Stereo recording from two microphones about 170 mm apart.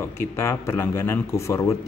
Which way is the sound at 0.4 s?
15° left (ahead or behind).